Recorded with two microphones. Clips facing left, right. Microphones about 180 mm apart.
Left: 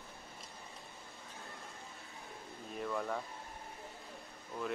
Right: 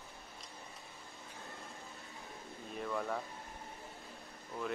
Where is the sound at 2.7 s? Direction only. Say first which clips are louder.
Even; centre (ahead or behind).